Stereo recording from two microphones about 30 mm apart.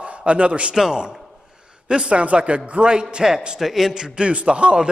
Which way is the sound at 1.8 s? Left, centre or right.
Right.